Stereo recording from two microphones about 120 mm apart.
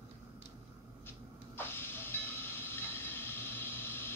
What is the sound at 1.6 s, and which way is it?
Train, 20° left (ahead or behind).